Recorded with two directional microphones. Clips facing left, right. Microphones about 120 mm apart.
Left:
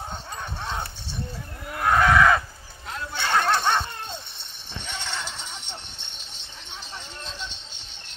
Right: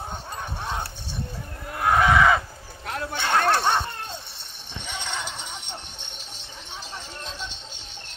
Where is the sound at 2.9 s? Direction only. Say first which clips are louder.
Right 4 dB; 55° right (ahead or behind).